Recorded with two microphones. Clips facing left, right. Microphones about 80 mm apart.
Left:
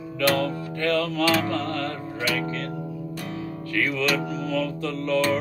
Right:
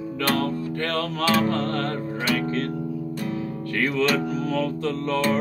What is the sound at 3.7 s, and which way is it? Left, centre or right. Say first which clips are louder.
Music: right 2 dB; right.